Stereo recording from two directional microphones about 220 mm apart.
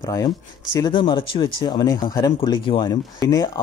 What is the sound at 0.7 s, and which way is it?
Speech, 20° left (ahead or behind).